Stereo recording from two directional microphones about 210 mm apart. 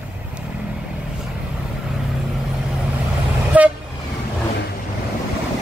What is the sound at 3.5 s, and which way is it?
Vehicle, 5° right (ahead or behind).